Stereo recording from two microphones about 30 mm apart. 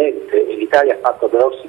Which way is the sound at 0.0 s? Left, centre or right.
Centre.